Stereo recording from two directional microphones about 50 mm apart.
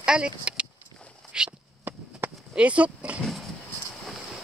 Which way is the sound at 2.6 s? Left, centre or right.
Right.